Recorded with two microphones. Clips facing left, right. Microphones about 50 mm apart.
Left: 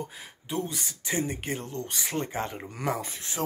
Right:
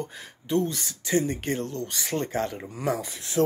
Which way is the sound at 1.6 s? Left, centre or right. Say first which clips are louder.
Right 3 dB; left.